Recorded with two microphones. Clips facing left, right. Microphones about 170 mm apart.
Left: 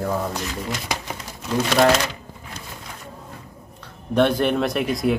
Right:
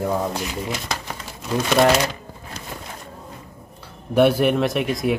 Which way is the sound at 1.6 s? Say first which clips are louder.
Right 1 dB; 10° right (ahead or behind).